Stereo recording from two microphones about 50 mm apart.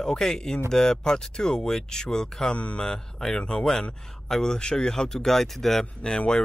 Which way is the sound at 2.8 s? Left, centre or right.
Centre.